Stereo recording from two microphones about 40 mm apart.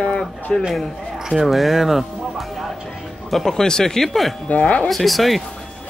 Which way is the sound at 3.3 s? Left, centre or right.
Centre.